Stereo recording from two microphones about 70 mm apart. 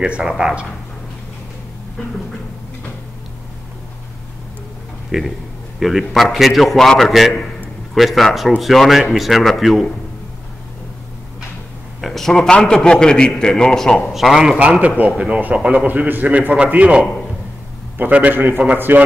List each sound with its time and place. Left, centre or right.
0.0 s a man's voice: centre
5.1 s speech: centre
12.0 s a man's voice: centre
14.6 s a man's voice: centre